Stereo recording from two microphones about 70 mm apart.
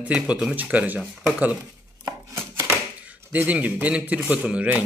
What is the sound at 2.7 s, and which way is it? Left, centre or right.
Speech, right.